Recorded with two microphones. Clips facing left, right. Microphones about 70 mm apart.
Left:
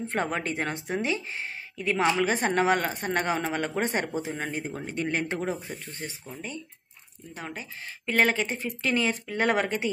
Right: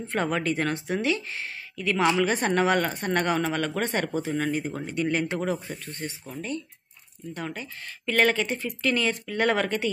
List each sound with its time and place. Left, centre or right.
0.1 s speech: left
7.3 s speech: centre